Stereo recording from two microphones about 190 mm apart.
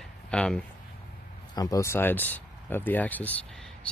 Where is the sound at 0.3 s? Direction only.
5° left (ahead or behind).